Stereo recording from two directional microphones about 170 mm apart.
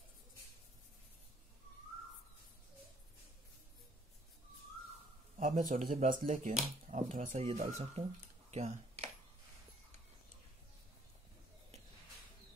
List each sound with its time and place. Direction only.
5.4 s speech: 50° right (ahead or behind)